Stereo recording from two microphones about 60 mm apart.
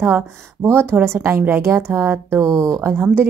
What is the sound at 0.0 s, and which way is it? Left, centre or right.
A woman's voice, right.